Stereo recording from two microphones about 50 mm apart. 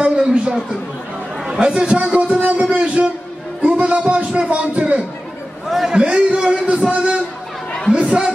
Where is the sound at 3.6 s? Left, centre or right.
Right.